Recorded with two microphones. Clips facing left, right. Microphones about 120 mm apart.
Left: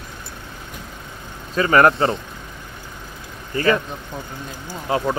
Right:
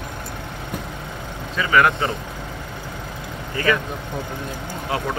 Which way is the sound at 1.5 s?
40° left (ahead or behind).